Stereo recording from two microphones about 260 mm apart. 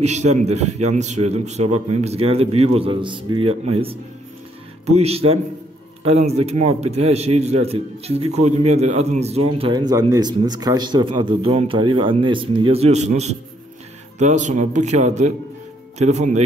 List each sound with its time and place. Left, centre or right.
0.0 s speech: right
4.8 s speech: right